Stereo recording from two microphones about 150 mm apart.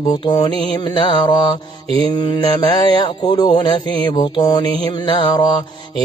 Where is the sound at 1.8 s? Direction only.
40° right (ahead or behind).